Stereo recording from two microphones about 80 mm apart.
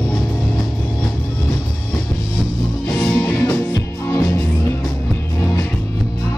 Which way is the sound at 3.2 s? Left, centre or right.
Left.